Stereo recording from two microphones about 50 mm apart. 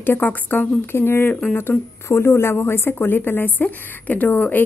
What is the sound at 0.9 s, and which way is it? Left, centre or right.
A woman's voice, left.